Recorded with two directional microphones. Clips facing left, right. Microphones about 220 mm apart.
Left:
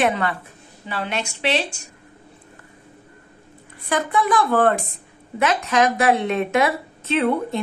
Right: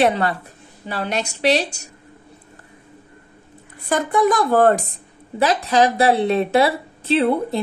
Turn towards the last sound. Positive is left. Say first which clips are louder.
# right 3 dB
turn(degrees=-30)  # may be behind; listen again after turning